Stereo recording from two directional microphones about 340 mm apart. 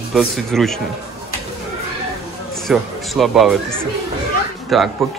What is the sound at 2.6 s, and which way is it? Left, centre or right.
Speech, centre.